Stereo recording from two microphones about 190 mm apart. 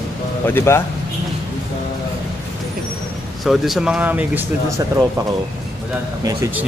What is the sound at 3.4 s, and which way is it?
Speech, centre (ahead or behind).